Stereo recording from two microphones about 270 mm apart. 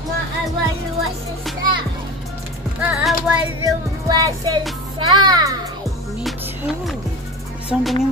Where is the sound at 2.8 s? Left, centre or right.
Centre.